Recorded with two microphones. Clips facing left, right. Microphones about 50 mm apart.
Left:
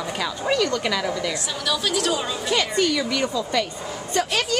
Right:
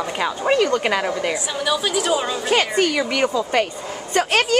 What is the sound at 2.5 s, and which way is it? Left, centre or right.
A woman's voice, right.